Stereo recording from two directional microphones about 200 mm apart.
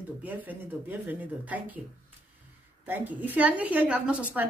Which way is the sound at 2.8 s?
10° right (ahead or behind).